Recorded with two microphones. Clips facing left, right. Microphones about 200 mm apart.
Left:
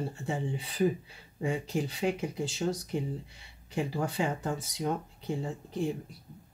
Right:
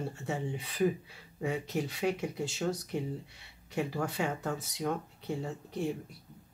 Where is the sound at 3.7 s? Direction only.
30° left (ahead or behind).